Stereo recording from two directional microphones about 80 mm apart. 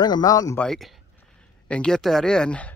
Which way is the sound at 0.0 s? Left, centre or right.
Left.